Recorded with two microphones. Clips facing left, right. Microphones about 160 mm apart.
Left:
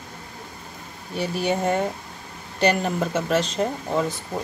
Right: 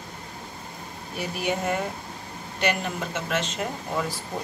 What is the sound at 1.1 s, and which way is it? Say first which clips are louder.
Speech: left 4 dB; 30° left (ahead or behind).